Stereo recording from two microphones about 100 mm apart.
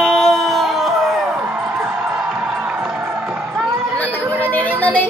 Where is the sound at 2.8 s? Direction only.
5° right (ahead or behind).